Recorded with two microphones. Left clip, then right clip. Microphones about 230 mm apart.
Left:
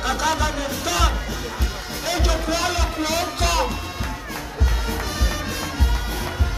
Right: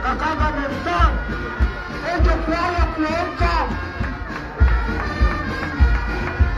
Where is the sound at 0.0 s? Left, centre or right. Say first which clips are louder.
Right 1 dB; centre.